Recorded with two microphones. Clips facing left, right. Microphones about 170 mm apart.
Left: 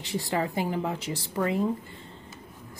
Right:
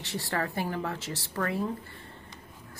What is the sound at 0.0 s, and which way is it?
Speech, 15° left (ahead or behind).